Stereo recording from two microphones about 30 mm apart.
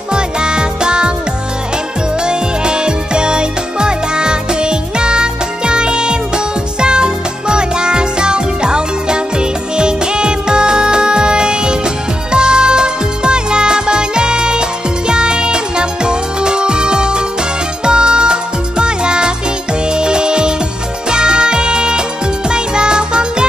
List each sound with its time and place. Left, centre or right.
0.1 s music: right
2.2 s music: right